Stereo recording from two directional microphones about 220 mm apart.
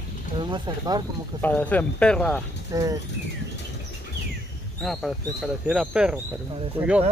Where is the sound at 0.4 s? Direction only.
20° right (ahead or behind).